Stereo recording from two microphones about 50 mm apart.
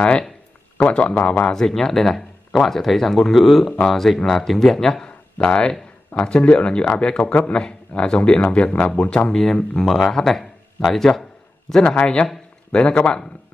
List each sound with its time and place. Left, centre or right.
0.7 s speech: left
1.4 s speech: centre
5.4 s speech: left; by 11.1 s centre
11.7 s speech: left